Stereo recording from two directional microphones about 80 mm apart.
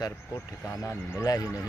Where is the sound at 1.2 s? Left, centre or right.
Left.